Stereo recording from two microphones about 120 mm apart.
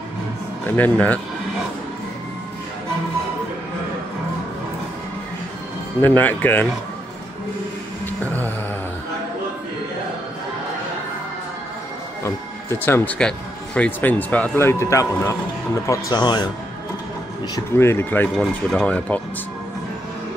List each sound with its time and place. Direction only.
0.7 s speech: 15° left (ahead or behind)
6.0 s speech: 15° left (ahead or behind)
12.2 s speech: 20° left (ahead or behind); by 16.4 s 35° left (ahead or behind)
17.7 s speech: 20° left (ahead or behind)
18.3 s speech: 5° left (ahead or behind)